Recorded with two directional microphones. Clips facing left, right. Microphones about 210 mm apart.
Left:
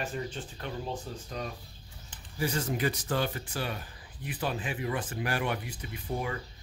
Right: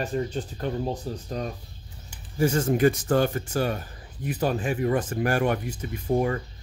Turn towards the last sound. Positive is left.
turn(degrees=-45)  # may be behind; listen again after turning